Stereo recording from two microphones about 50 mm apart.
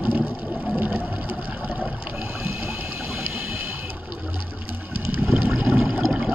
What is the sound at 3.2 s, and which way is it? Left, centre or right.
Water, right.